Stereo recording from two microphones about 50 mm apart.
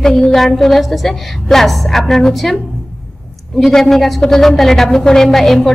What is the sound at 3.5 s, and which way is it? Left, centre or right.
A woman's voice, centre.